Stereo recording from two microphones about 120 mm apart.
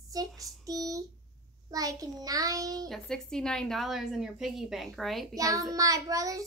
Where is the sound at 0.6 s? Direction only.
30° right (ahead or behind).